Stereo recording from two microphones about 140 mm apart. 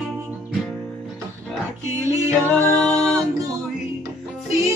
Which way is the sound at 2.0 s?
20° right (ahead or behind).